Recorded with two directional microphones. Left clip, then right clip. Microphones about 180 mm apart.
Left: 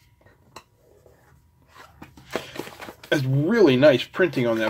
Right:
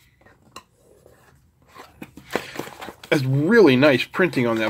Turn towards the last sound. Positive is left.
turn(degrees=-25)  # may be behind; listen again after turning